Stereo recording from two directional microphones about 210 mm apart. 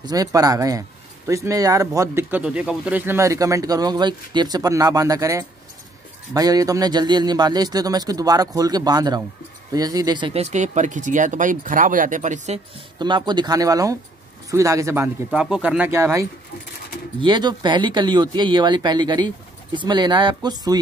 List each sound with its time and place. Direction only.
0.0 s speech: 15° right (ahead or behind); by 12.5 s 35° right (ahead or behind)
13.0 s speech: 20° right (ahead or behind)